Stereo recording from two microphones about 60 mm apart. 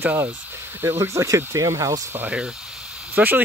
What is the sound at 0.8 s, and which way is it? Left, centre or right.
Speech, right.